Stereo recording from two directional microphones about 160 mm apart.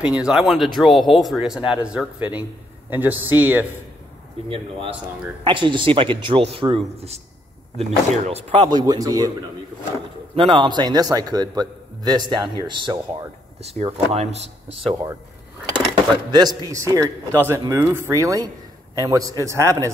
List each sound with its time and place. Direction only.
0.0 s speech: 5° right (ahead or behind)
4.5 s a man's voice: 35° right (ahead or behind)
8.6 s speech: 25° right (ahead or behind)
10.3 s speech: 35° right (ahead or behind)
13.6 s a man's voice: 40° right (ahead or behind)
15.9 s speech: 25° right (ahead or behind)